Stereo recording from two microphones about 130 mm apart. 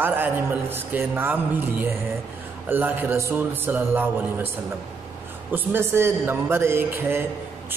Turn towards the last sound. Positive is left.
turn(degrees=-15)  # may be behind; listen again after turning